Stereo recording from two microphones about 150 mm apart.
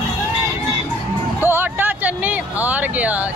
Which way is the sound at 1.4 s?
15° right (ahead or behind).